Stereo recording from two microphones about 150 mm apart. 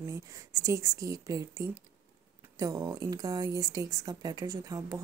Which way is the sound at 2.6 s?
25° right (ahead or behind).